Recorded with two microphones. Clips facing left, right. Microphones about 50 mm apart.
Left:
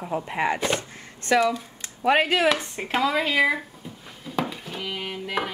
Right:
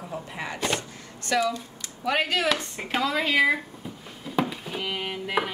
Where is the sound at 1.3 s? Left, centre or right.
Left.